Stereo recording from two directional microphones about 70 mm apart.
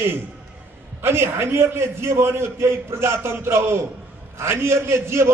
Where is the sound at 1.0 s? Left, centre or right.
Right.